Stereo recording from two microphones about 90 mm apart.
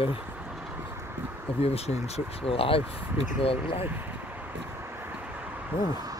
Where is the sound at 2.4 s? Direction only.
90° left.